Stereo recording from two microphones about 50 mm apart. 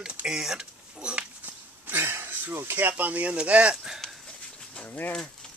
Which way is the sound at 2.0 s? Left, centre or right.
Right.